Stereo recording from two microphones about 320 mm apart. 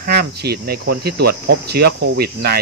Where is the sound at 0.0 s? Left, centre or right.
Right.